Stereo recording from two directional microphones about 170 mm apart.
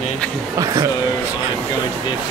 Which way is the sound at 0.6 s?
20° right (ahead or behind).